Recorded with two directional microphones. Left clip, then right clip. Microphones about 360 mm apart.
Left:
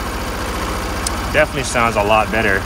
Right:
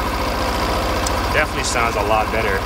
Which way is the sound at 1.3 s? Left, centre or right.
Left.